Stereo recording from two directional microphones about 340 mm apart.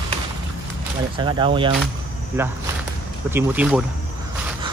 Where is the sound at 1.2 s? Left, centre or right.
Centre.